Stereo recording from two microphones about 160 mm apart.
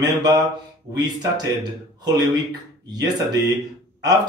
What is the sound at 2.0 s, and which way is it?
A man's voice, 25° right (ahead or behind).